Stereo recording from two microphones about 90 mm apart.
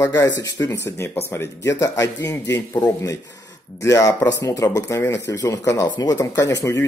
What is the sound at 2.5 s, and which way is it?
Speech, 20° left (ahead or behind).